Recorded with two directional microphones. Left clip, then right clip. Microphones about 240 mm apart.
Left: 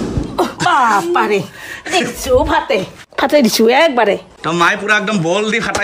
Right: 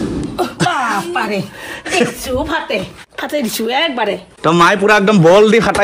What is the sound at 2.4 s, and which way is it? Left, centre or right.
A woman's voice, centre.